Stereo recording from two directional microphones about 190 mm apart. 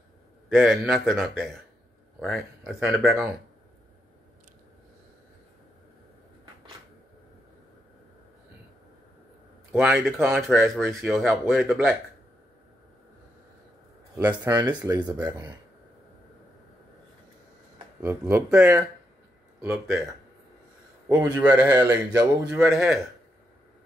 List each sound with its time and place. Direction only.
0.6 s speech: centre (ahead or behind)
9.7 s speech: 10° right (ahead or behind)
11.1 s speech: centre (ahead or behind)
14.1 s speech: 10° right (ahead or behind)
14.6 s speech: 20° right (ahead or behind)
18.0 s speech: 15° right (ahead or behind)
19.6 s speech: 10° right (ahead or behind)
21.1 s speech: 10° right (ahead or behind)
22.7 s speech: 5° right (ahead or behind)